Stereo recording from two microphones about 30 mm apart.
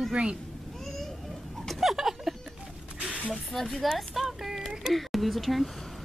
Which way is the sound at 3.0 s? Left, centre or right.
Right.